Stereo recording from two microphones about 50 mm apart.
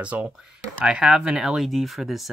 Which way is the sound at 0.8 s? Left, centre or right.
Centre.